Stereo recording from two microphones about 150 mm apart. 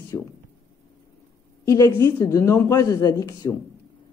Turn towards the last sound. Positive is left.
turn(degrees=25)  # may be behind; listen again after turning